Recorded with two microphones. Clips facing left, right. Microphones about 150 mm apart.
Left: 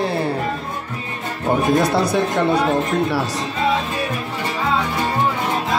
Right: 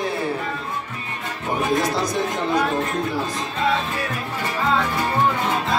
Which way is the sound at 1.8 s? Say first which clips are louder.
Left 5 dB; 65° left (ahead or behind).